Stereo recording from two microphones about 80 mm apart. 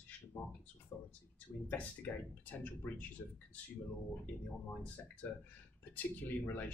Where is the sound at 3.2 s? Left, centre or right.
Left.